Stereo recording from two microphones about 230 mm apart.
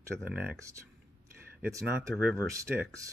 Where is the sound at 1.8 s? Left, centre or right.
Centre.